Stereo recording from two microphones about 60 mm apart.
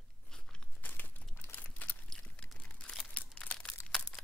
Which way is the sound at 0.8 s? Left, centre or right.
Left.